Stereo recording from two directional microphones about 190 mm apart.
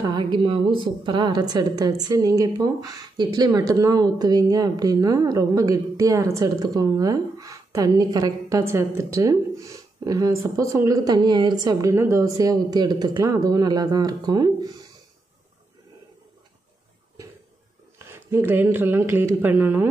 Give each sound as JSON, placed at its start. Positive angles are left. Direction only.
{"t": 0.0, "sound": "speech", "side_deg": -25}
{"t": 17.9, "sound": "speech", "side_deg": -10}